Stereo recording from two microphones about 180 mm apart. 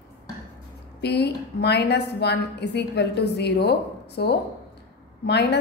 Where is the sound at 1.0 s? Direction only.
65° left (ahead or behind).